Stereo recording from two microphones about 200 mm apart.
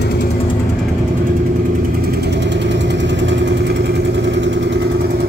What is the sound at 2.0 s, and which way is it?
Vehicle, 55° right (ahead or behind).